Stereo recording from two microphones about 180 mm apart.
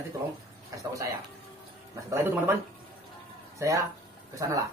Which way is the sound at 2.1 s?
10° right (ahead or behind).